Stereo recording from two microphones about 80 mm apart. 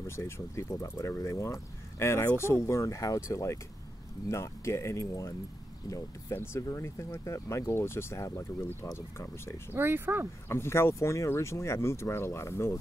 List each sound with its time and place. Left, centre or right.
0.0 s speech: left
6.3 s speech: left
9.7 s speech: right
10.5 s speech: left